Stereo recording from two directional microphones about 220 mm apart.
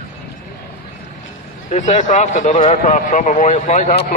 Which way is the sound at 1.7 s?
35° left (ahead or behind).